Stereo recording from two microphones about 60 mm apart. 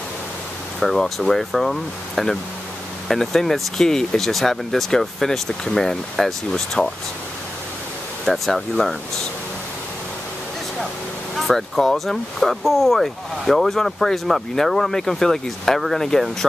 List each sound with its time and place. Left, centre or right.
0.7 s speech: centre
8.3 s speech: centre
11.3 s speech: centre